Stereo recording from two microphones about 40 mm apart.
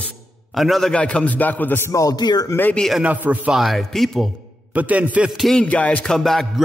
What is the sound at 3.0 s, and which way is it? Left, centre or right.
Speech, right.